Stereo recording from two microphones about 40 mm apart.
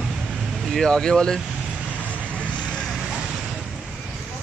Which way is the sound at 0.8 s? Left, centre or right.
Centre.